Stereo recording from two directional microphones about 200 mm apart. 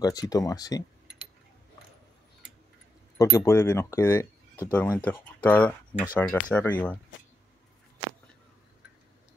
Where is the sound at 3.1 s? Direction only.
15° left (ahead or behind).